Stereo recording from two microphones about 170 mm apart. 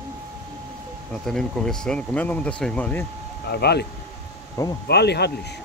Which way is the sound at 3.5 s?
75° left (ahead or behind).